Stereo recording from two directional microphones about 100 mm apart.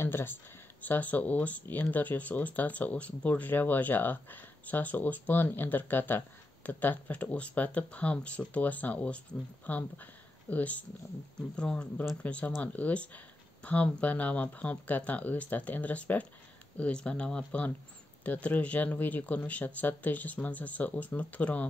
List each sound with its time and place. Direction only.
0.0 s speech: 25° left (ahead or behind)